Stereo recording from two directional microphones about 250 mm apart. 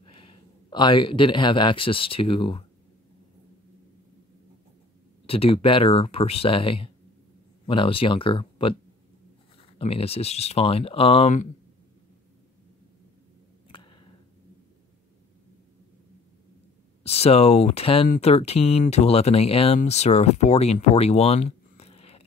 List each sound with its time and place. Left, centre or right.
0.0 s speech: left
5.2 s speech: left
9.8 s speech: left
13.7 s a sound: centre
17.0 s speech: left